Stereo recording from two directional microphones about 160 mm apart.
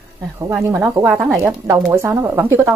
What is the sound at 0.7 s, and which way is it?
A woman's voice, 15° right (ahead or behind).